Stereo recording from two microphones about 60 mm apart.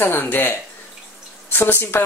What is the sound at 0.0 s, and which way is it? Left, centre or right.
Speech, left.